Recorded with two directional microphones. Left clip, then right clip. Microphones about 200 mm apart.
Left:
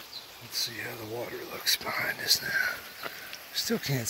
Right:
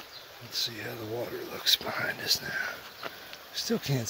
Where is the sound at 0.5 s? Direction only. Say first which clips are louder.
Even; 20° right (ahead or behind).